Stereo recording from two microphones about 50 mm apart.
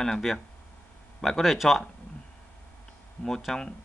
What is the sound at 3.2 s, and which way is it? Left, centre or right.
Speech, left.